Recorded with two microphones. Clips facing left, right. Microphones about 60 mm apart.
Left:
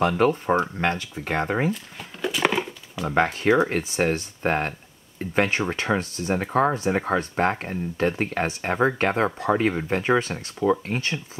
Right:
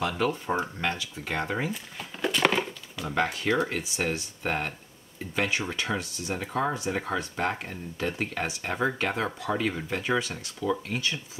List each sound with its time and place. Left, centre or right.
0.2 s speech: left
1.7 s a sound: centre
3.3 s speech: left